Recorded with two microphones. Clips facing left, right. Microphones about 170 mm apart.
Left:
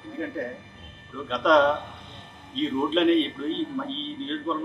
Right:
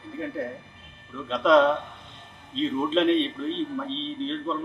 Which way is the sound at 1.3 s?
Centre (ahead or behind).